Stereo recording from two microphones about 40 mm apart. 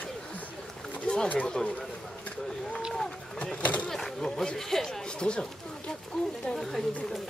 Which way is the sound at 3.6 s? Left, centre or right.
Left.